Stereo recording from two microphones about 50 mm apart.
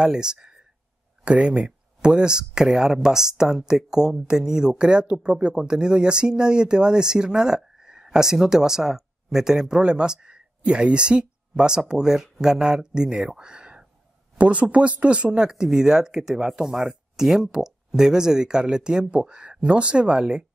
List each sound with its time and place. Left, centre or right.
0.0 s speech: centre